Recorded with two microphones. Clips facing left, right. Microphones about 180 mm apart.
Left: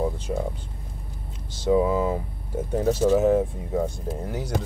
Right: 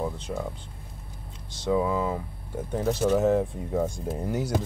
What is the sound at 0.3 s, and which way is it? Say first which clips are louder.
Speech: left 4 dB; 15° left (ahead or behind).